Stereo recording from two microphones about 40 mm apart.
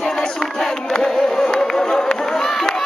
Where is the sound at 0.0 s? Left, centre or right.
Centre.